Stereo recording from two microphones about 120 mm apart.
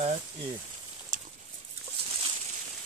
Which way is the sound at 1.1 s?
90° right.